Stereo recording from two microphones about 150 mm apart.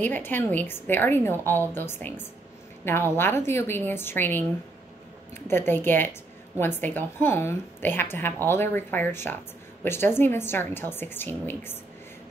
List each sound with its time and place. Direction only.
0.0 s a woman's voice: 10° left (ahead or behind)